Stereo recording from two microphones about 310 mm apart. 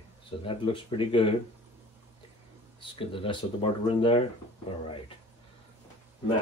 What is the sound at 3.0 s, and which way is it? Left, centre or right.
Speech, centre.